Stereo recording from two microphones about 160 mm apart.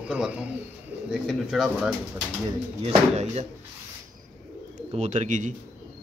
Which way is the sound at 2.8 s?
40° right (ahead or behind).